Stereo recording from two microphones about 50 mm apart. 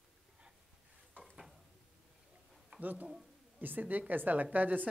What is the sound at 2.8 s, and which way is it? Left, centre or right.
Speech, right.